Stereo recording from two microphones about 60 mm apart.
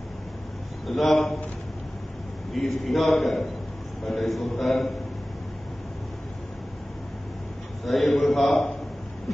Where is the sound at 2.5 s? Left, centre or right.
Centre.